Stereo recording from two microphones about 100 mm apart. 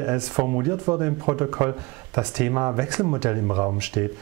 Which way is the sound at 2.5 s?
20° right (ahead or behind).